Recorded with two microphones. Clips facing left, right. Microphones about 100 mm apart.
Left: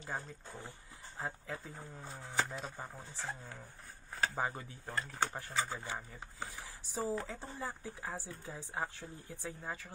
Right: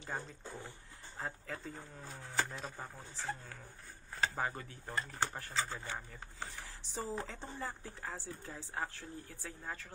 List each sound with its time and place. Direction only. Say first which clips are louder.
1.1 s speech: left 1 dB; 5° left (ahead or behind)
4.4 s speech: left 1 dB; 20° left (ahead or behind)
4.8 s speech: left 1 dB; centre (ahead or behind)
5.4 s speech: left 1 dB; 10° left (ahead or behind)